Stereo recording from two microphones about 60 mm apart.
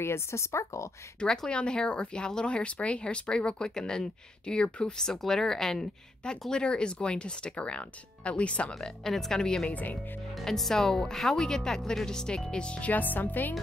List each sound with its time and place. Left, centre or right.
0.0 s speech: left
1.2 s speech: centre
9.7 s speech: left
10.4 s speech: centre
12.9 s speech: left